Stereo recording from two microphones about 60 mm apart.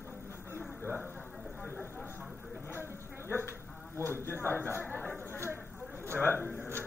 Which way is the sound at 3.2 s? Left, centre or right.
Left.